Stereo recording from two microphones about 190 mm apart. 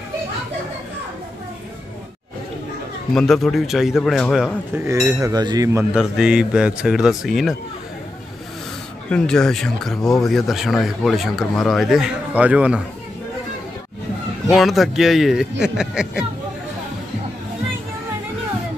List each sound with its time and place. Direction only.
3.1 s speech: centre (ahead or behind)
4.7 s cutlery: 15° right (ahead or behind)
5.9 s speech: 5° right (ahead or behind)
9.1 s speech: 5° left (ahead or behind)
14.5 s speech: centre (ahead or behind)